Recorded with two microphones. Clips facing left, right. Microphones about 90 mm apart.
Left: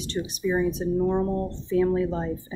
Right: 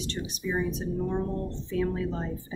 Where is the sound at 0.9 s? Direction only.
25° left (ahead or behind).